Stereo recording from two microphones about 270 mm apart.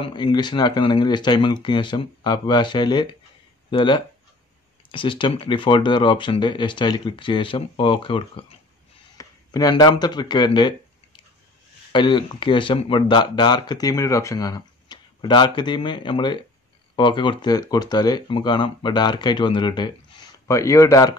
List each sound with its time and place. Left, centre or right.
0.0 s speech: centre
11.9 s speech: centre